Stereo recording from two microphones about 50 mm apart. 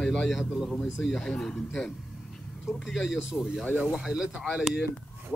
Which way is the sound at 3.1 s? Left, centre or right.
Centre.